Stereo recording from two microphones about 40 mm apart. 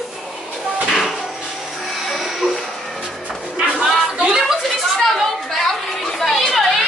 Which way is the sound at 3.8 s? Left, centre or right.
Right.